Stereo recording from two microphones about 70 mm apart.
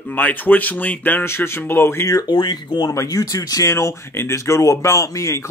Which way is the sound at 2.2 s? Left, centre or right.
Left.